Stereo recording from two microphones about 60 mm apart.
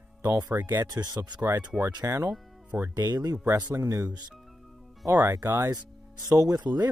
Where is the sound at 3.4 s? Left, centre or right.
Right.